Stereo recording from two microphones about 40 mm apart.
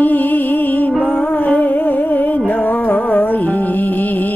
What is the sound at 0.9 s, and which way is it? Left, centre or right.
Music, left.